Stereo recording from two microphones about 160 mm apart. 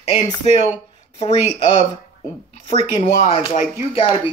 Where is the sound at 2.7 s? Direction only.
40° left (ahead or behind).